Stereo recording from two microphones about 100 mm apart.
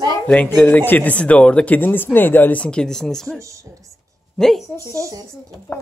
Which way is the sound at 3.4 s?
30° right (ahead or behind).